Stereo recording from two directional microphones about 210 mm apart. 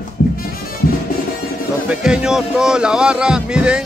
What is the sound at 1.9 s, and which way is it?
Speech, 5° right (ahead or behind).